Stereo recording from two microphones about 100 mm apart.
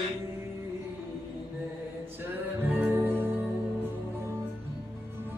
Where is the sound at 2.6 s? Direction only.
20° right (ahead or behind).